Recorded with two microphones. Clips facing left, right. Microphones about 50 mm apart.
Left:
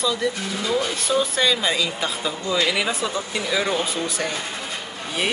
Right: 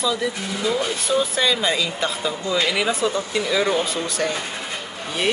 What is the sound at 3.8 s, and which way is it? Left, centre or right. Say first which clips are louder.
Speech: right 2 dB; centre.